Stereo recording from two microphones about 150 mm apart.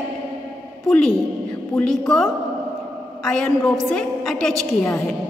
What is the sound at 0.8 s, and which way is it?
A woman's voice, 5° left (ahead or behind).